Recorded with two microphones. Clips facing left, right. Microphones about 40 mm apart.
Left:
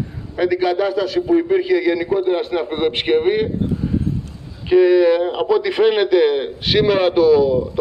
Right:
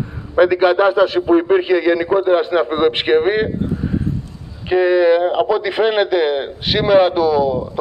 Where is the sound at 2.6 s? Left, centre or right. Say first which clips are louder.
Right 3 dB; centre.